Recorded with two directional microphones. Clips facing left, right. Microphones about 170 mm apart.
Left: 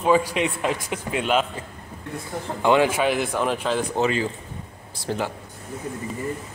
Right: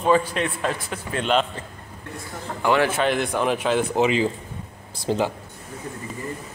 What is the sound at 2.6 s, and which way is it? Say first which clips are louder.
Speech: left 1 dB; 15° left (ahead or behind).